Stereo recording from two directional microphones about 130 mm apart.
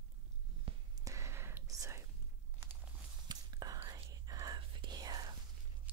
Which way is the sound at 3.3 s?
30° right (ahead or behind).